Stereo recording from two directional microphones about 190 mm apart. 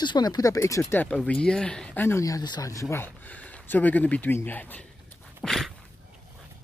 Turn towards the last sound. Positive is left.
turn(degrees=0)  # may be behind; listen again after turning